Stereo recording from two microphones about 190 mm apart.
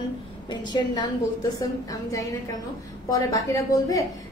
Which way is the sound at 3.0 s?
15° left (ahead or behind).